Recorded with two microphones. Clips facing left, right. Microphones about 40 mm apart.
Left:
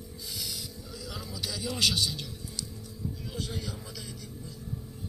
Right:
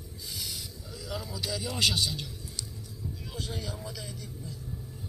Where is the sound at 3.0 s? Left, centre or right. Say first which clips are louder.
Left 3 dB; right.